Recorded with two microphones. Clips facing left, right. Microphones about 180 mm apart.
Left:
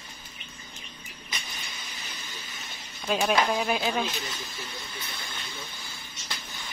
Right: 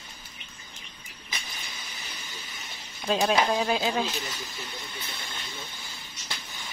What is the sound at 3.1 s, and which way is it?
Speech, 25° right (ahead or behind).